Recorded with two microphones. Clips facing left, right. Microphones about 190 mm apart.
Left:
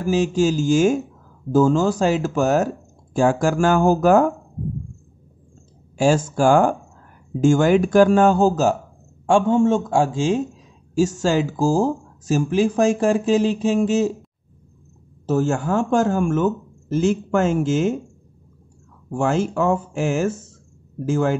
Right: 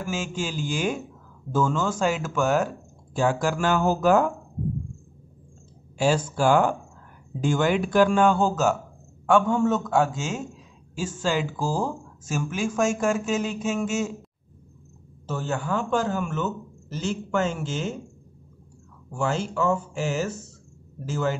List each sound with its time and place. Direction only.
0.0 s speech: 35° left (ahead or behind)
5.9 s speech: 50° left (ahead or behind)
9.2 s a man's voice: 25° left (ahead or behind)
11.0 s speech: 40° left (ahead or behind)
15.2 s speech: 45° left (ahead or behind)
19.0 s speech: 50° left (ahead or behind)